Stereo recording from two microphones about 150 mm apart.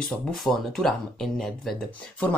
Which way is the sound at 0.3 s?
Centre (ahead or behind).